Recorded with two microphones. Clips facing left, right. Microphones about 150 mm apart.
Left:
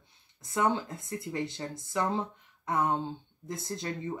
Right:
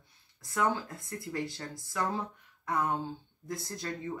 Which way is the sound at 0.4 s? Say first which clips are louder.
Left 2 dB; 20° left (ahead or behind).